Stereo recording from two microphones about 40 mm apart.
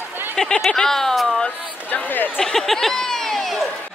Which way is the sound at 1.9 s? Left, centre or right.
Left.